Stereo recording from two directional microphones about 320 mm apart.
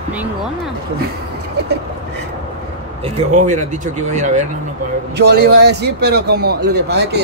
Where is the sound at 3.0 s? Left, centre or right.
Right.